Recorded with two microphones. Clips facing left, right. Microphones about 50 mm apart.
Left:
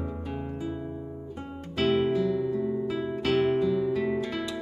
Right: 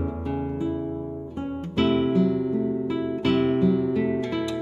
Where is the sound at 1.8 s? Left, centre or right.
Centre.